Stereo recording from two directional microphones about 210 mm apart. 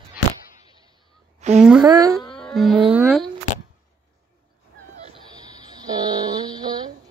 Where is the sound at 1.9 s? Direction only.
15° right (ahead or behind).